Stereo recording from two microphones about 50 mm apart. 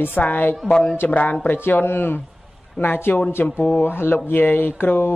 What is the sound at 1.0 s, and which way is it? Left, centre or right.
Speech, left.